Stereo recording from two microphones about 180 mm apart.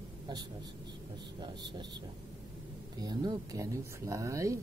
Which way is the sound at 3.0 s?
25° right (ahead or behind).